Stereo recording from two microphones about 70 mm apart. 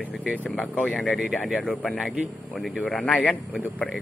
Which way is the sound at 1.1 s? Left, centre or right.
Centre.